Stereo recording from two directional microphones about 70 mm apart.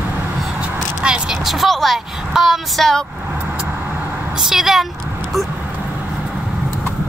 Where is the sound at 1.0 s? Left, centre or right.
Centre.